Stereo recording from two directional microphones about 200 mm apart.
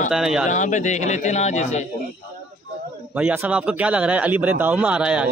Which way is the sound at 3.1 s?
10° right (ahead or behind).